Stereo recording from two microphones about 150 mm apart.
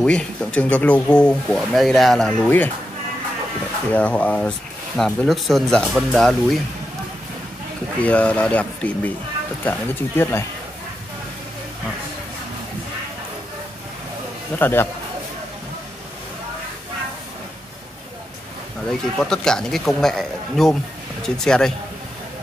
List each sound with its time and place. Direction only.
0.0 s speech: 5° left (ahead or behind)
3.9 s speech: 10° left (ahead or behind)
8.0 s speech: 10° left (ahead or behind)
14.6 s speech: 15° left (ahead or behind)
18.9 s speech: 5° left (ahead or behind)